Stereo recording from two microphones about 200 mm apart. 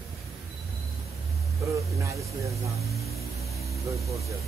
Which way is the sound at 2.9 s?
Centre (ahead or behind).